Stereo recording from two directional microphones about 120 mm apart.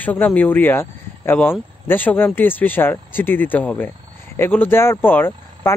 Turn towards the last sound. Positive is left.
turn(degrees=15)  # may be behind; listen again after turning